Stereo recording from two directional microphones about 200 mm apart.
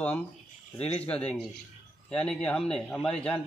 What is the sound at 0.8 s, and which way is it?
Speech, 30° left (ahead or behind).